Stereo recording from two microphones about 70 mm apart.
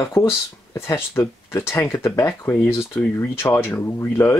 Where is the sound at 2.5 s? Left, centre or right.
Centre.